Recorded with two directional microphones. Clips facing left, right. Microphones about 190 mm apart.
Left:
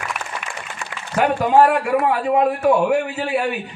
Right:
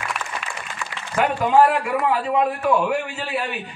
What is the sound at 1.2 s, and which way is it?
A man's voice, 50° left (ahead or behind).